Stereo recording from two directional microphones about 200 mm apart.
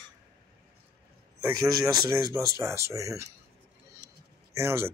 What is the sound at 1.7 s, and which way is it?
Speech, 20° right (ahead or behind).